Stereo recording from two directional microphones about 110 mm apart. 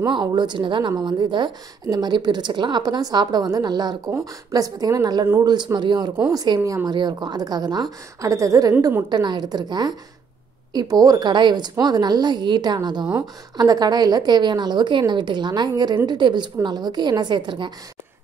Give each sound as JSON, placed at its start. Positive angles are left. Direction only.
{"t": 0.1, "sound": "speech", "side_deg": -40}
{"t": 9.1, "sound": "speech", "side_deg": -40}